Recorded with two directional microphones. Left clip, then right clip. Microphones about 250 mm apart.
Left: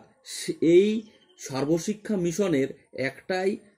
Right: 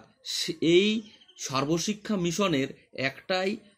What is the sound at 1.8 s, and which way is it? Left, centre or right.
Speech, centre.